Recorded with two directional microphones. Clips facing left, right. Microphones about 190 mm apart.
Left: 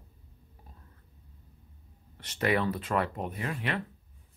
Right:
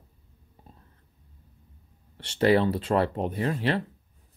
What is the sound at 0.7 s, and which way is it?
Whispering, 25° right (ahead or behind).